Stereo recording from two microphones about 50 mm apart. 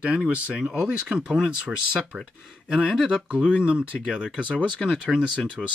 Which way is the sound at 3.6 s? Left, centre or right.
Right.